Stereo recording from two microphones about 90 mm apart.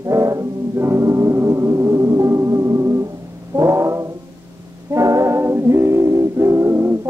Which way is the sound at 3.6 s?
30° right (ahead or behind).